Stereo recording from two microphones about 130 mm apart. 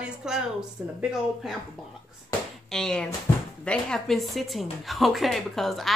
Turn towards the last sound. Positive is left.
turn(degrees=0)  # may be behind; listen again after turning